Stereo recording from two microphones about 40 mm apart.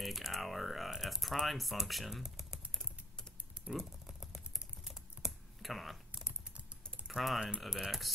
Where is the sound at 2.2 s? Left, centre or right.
Centre.